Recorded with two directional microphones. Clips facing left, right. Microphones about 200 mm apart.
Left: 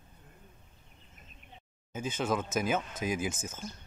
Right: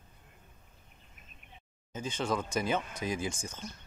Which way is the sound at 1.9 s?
5° left (ahead or behind).